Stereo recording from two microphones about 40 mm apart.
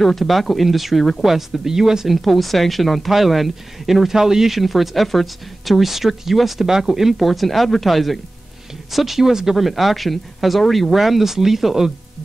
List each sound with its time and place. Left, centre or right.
0.0 s speech: centre
2.0 s speech: centre